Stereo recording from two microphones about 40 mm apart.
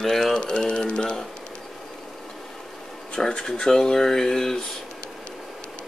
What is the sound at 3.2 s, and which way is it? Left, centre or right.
Speech, left.